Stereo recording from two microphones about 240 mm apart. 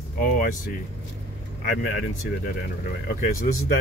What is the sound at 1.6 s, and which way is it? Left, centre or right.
Speech, left.